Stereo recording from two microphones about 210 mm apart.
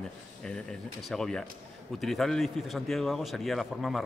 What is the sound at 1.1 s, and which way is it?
Speech, centre (ahead or behind).